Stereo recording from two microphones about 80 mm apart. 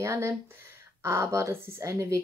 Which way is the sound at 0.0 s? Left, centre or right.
Right.